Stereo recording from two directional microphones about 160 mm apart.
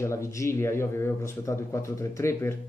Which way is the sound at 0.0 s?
15° left (ahead or behind).